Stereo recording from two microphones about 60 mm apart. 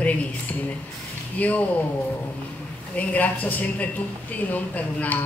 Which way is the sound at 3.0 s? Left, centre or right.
Left.